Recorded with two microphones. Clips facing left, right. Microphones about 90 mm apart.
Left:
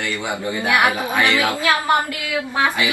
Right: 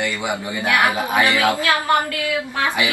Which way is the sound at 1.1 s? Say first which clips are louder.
Right 1 dB; 20° right (ahead or behind).